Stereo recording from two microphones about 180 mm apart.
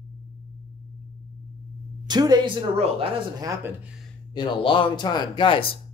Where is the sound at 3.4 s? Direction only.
15° right (ahead or behind).